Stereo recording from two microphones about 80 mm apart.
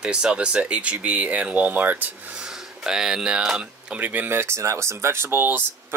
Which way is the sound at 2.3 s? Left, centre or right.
Centre.